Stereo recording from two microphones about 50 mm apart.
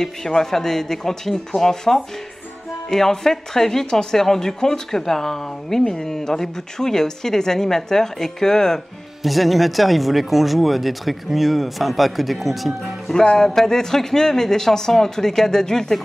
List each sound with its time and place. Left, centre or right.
0.0 s speech: centre
9.2 s speech: centre
13.1 s music: centre
13.4 s speech: centre